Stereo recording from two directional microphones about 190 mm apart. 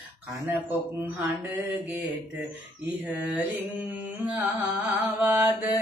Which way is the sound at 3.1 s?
5° right (ahead or behind).